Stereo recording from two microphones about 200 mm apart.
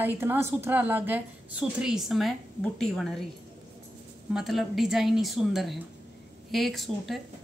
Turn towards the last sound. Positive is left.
turn(degrees=0)  # may be behind; listen again after turning